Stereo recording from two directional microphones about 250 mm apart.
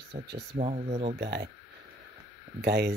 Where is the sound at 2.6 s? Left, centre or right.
Right.